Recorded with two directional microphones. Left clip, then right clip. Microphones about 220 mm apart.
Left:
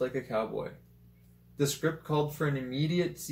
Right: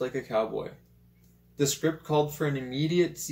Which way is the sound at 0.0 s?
10° right (ahead or behind).